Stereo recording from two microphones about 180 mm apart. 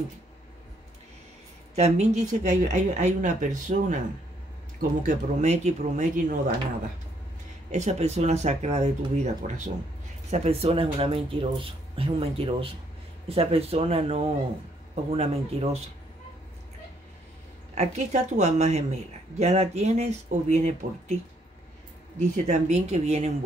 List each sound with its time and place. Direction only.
1.8 s speech: 40° right (ahead or behind)
7.7 s speech: 40° right (ahead or behind)
10.3 s speech: 35° right (ahead or behind)
17.7 s speech: 40° right (ahead or behind)
22.5 s speech: 40° right (ahead or behind)